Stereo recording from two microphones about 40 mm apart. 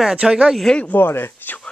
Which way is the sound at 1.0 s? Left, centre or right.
Left.